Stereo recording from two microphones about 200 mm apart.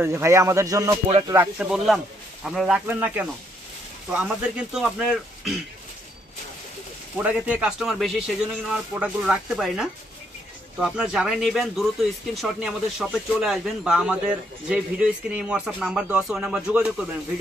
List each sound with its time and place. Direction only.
0.0 s speech: 10° right (ahead or behind)
1.0 s speech: 30° right (ahead or behind)
1.3 s speech: 10° right (ahead or behind)
7.2 s speech: 5° right (ahead or behind)